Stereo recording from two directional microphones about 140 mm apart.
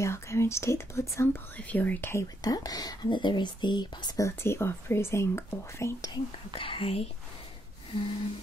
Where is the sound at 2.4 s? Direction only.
25° left (ahead or behind).